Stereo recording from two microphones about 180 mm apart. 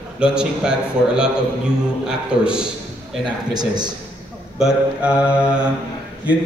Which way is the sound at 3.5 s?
25° right (ahead or behind).